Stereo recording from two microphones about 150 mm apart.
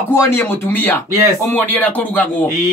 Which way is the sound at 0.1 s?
15° left (ahead or behind).